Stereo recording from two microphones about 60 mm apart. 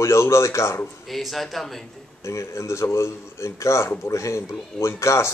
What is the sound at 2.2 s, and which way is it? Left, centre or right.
A man's voice, left.